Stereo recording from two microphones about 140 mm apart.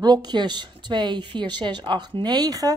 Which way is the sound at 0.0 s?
30° right (ahead or behind).